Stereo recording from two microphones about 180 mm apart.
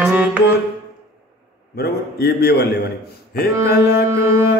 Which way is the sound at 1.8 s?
60° left (ahead or behind).